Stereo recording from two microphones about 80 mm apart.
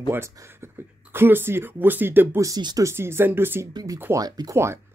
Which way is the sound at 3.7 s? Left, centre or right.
Right.